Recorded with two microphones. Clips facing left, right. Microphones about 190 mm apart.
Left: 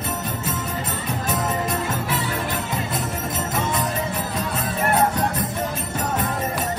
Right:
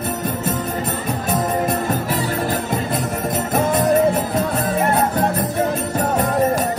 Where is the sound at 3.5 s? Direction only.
60° right (ahead or behind).